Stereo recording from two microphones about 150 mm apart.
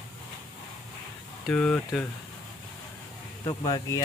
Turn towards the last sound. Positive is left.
turn(degrees=25)  # may be behind; listen again after turning